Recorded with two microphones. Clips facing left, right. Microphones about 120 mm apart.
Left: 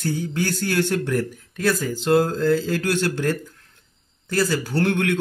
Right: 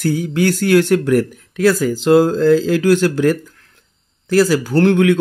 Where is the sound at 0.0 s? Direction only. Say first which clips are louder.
Right 8 dB; 90° right.